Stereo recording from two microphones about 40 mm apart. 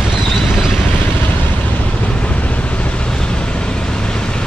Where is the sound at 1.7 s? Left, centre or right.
Left.